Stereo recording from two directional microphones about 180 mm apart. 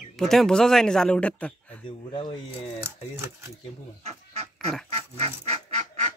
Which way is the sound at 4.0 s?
35° right (ahead or behind).